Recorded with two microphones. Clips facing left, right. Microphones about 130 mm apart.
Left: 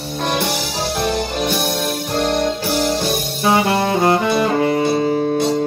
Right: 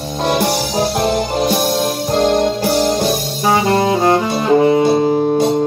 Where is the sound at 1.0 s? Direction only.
40° right (ahead or behind).